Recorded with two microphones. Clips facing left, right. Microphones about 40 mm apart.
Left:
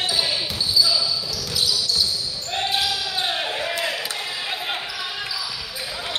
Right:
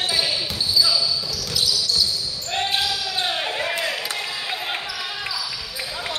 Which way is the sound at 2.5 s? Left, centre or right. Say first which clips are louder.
Even; centre.